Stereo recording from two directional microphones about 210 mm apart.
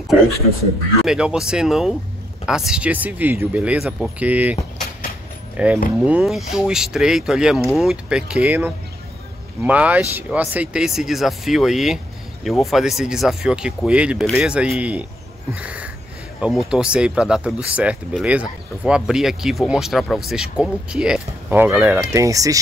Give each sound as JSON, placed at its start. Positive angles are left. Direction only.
{"t": 1.0, "sound": "speech", "side_deg": -5}
{"t": 5.6, "sound": "speech", "side_deg": -5}
{"t": 15.5, "sound": "a sound", "side_deg": -5}
{"t": 16.3, "sound": "speech", "side_deg": -5}